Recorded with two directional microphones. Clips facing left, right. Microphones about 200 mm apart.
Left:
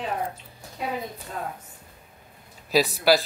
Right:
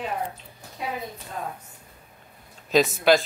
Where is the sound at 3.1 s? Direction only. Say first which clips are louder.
Right 1 dB; 5° left (ahead or behind).